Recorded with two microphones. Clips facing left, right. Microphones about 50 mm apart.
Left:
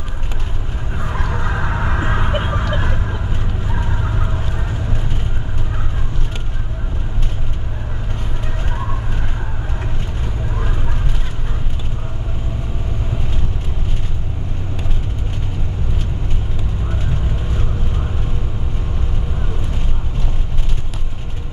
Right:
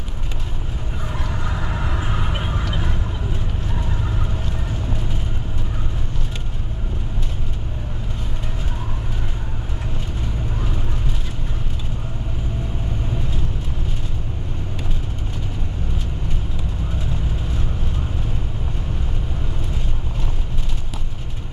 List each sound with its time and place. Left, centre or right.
1.0 s vehicle: left